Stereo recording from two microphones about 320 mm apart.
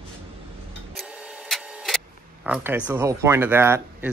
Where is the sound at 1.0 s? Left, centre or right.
Centre.